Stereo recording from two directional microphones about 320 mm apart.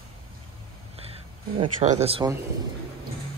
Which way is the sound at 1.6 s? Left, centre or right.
Centre.